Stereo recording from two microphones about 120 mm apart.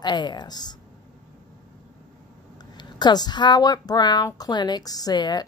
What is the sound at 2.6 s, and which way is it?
Speech, 35° left (ahead or behind).